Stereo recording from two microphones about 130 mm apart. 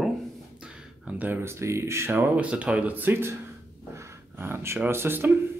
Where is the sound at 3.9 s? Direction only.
20° right (ahead or behind).